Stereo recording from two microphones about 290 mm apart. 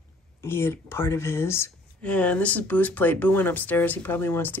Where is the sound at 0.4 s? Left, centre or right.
Centre.